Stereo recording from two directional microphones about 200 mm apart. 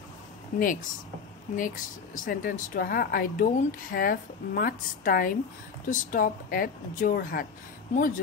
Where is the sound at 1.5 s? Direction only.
40° left (ahead or behind).